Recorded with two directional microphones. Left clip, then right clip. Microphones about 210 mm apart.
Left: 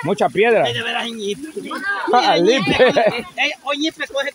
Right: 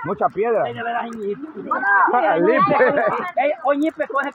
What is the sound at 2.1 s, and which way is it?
Speech, 35° left (ahead or behind).